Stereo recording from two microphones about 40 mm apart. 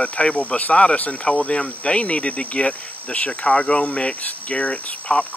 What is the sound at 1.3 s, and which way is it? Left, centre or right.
Speech, left.